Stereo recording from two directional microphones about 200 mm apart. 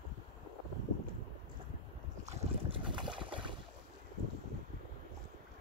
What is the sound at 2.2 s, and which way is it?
Boat, 25° right (ahead or behind).